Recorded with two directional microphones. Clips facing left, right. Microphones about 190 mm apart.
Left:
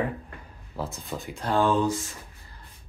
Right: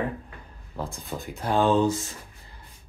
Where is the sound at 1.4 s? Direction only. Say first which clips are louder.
Right 2 dB; 20° right (ahead or behind).